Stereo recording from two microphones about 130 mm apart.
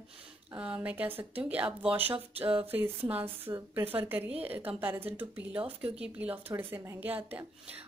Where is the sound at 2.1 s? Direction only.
45° right (ahead or behind).